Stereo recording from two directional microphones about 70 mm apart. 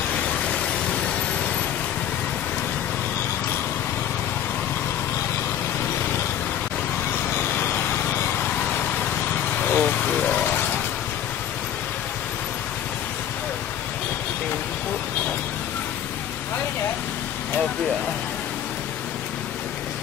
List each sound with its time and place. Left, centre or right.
0.1 s a sound: centre
7.5 s vehicle: left
9.7 s vehicle: left